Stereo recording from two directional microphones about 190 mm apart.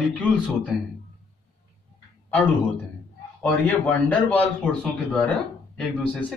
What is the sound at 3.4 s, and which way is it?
A man's voice, 5° left (ahead or behind).